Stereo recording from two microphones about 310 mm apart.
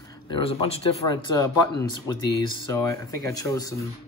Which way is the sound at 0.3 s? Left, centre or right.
Centre.